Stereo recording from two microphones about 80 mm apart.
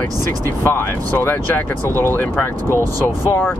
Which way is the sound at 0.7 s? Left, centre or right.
Left.